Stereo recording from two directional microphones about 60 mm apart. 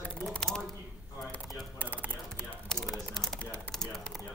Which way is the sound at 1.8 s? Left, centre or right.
Right.